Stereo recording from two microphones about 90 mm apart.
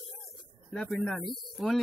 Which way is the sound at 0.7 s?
5° left (ahead or behind).